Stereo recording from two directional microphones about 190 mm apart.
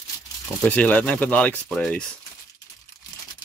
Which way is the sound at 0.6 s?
5° left (ahead or behind).